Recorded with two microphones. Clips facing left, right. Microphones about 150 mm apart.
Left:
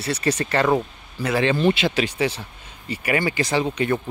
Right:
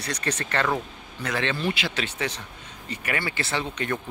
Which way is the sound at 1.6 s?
20° left (ahead or behind).